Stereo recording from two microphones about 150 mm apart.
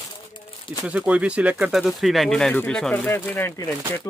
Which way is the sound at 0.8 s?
10° right (ahead or behind).